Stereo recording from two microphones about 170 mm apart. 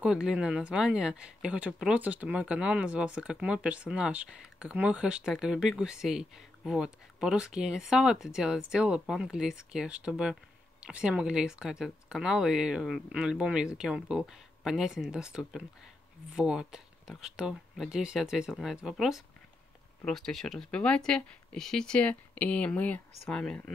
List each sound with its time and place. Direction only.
0.0 s speech: 5° right (ahead or behind)